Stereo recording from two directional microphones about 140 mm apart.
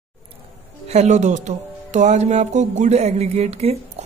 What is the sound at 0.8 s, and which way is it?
A woman's voice, 55° right (ahead or behind).